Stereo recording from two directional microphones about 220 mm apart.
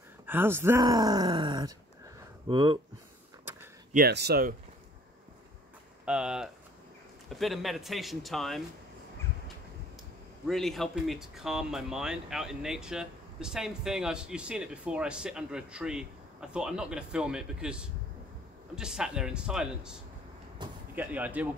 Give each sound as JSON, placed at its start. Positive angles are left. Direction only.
{"t": 0.3, "sound": "speech", "side_deg": -10}
{"t": 3.9, "sound": "speech", "side_deg": -45}
{"t": 6.0, "sound": "speech", "side_deg": -5}
{"t": 10.5, "sound": "speech", "side_deg": 0}
{"t": 20.6, "sound": "speech", "side_deg": -20}
{"t": 20.9, "sound": "speech", "side_deg": -10}